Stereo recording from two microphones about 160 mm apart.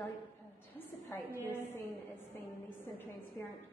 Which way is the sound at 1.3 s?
15° right (ahead or behind).